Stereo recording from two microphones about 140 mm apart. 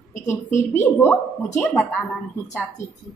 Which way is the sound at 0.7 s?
15° left (ahead or behind).